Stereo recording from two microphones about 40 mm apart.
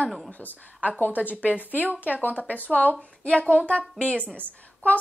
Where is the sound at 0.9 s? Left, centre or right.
Left.